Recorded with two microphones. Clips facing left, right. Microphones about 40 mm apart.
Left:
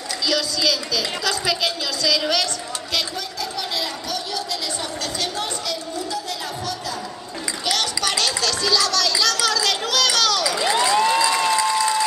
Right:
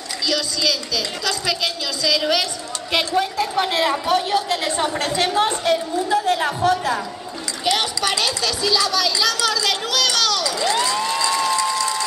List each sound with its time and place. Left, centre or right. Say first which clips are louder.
0.3 s speech: even; centre
2.9 s a woman's voice: right 8 dB; right
7.6 s speech: right 3 dB; centre
11.3 s applause: left 1 dB; centre